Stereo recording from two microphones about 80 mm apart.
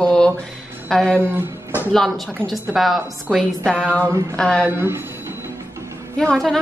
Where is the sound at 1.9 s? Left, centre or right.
Centre.